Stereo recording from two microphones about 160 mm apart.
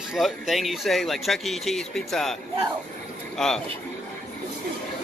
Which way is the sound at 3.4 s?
5° left (ahead or behind).